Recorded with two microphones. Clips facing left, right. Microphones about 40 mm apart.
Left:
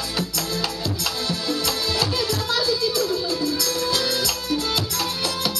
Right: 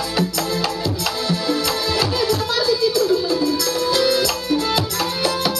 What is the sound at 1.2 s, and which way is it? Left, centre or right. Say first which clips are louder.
Music: right 5 dB; right.